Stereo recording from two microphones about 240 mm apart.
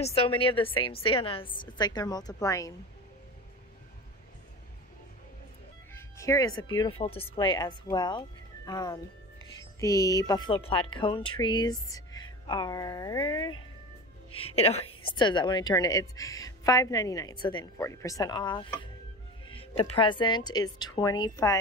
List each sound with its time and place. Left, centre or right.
0.0 s a woman's voice: left
5.9 s a woman's voice: centre